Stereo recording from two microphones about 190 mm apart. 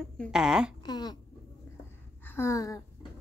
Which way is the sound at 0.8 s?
20° left (ahead or behind).